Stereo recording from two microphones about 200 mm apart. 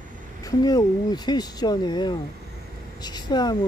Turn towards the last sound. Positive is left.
turn(degrees=20)  # may be behind; listen again after turning